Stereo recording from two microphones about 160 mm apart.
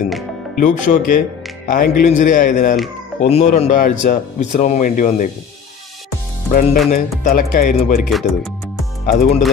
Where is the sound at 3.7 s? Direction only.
55° left (ahead or behind).